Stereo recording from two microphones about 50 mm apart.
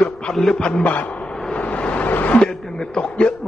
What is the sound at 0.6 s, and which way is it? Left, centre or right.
Speech, centre.